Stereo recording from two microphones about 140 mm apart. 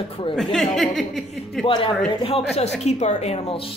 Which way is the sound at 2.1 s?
45° left (ahead or behind).